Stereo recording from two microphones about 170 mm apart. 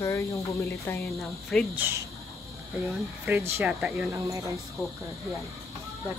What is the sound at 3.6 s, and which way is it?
Speech, 5° right (ahead or behind).